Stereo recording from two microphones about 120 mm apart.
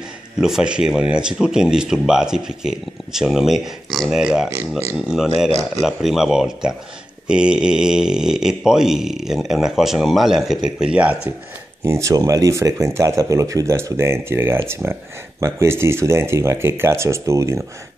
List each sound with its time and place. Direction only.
0.4 s speech: 5° right (ahead or behind)
4.5 s speech: 20° right (ahead or behind)
4.9 s speech: 5° right (ahead or behind)
11.8 s speech: 25° right (ahead or behind)